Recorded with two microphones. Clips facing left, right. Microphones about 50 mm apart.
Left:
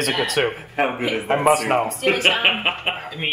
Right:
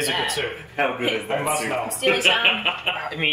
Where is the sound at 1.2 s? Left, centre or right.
Left.